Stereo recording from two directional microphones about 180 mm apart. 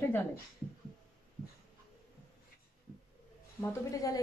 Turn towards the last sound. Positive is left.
turn(degrees=20)  # may be behind; listen again after turning